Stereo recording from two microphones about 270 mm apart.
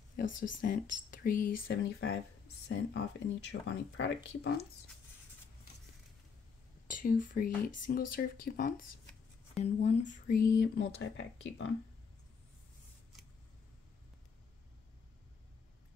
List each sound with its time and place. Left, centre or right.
0.1 s speech: left
6.9 s speech: left